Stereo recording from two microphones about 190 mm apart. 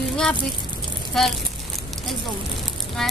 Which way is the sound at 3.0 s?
Centre (ahead or behind).